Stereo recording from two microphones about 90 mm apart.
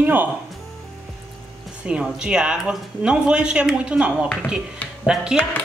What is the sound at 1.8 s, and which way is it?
Speech, 10° right (ahead or behind).